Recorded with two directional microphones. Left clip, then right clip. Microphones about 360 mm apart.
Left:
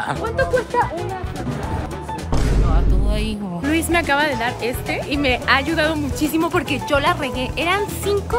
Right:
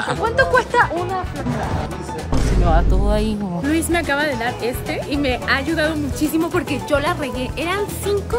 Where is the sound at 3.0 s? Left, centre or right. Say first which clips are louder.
Right 5 dB; centre.